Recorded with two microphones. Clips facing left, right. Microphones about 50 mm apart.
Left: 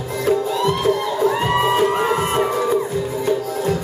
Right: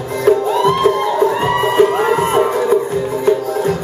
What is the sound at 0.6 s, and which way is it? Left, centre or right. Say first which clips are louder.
Music: right 5 dB; right.